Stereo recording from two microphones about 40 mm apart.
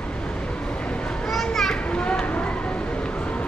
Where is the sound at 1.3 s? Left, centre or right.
Centre.